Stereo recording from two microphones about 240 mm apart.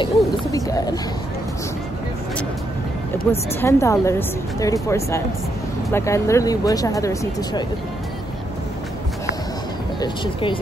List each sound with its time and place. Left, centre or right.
0.0 s a sound: centre
3.3 s speech: centre
9.9 s speech: centre